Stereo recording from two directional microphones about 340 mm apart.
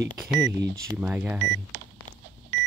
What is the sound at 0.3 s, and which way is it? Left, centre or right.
Speech, centre.